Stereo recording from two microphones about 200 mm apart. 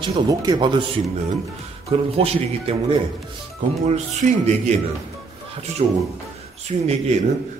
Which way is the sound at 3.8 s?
35° right (ahead or behind).